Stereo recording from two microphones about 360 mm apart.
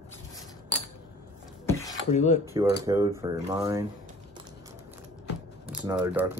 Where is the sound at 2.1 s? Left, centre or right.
Centre.